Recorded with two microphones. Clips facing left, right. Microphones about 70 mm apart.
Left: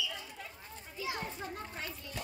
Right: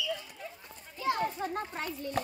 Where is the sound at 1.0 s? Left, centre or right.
Right.